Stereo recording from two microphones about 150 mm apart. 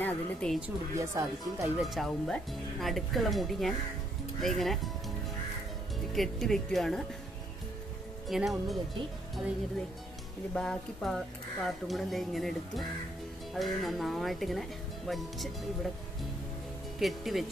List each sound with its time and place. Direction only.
0.0 s speech: 5° left (ahead or behind)
0.9 s speech: 20° right (ahead or behind)
1.8 s speech: centre (ahead or behind)
6.1 s speech: centre (ahead or behind)
8.3 s speech: centre (ahead or behind)
10.5 s speech: 5° left (ahead or behind)
17.0 s speech: centre (ahead or behind)